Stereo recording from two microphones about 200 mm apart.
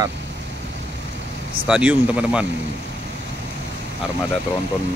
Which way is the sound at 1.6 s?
5° right (ahead or behind).